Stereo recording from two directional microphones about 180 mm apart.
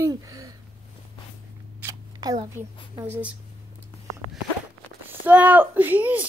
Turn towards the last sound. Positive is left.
turn(degrees=-10)  # may be behind; listen again after turning